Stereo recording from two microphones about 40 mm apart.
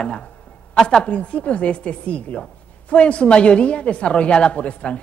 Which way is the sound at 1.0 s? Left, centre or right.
Left.